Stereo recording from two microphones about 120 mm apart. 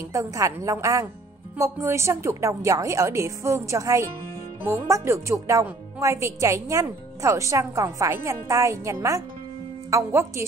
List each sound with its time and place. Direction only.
0.0 s a woman's voice: 25° right (ahead or behind)